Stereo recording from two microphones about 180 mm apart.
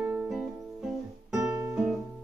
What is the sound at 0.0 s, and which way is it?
Music, 5° right (ahead or behind).